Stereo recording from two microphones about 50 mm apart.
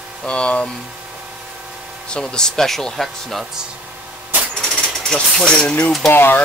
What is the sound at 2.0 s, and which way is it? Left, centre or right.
Speech, centre.